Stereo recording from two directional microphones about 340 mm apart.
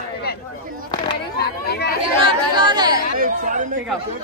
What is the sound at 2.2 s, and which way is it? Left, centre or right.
Chatter, centre.